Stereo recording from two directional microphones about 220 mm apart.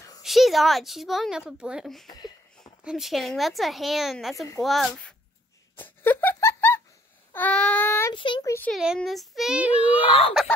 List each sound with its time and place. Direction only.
0.2 s a woman's voice: centre (ahead or behind)
2.0 s a sound: 20° left (ahead or behind)
2.6 s speech: centre (ahead or behind)
5.8 s a sound: 10° left (ahead or behind)
8.1 s a child's voice: 20° left (ahead or behind)
8.7 s speech: centre (ahead or behind)
9.9 s speech: 25° left (ahead or behind)